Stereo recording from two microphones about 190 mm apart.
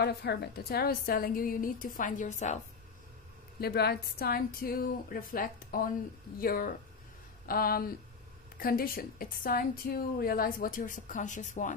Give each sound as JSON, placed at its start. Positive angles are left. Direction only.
{"t": 0.0, "sound": "a woman's voice", "side_deg": 60}
{"t": 3.6, "sound": "a woman's voice", "side_deg": 55}